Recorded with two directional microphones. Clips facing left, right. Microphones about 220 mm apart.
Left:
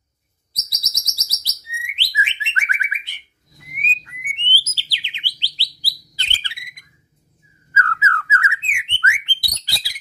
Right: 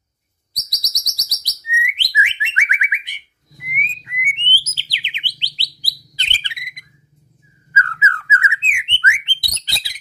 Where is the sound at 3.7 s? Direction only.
15° right (ahead or behind).